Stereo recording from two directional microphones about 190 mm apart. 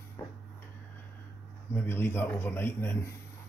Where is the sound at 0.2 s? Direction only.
15° left (ahead or behind).